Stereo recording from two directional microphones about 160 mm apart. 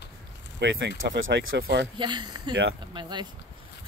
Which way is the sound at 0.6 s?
90° right.